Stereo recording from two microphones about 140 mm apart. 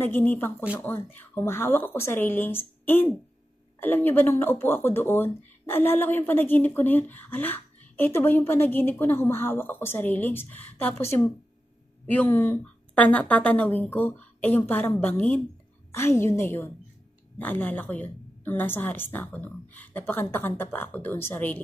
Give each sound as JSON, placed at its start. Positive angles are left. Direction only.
{"t": 0.0, "sound": "speech", "side_deg": 15}